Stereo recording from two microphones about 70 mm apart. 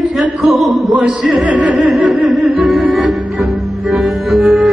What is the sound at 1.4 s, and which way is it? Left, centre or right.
Music, right.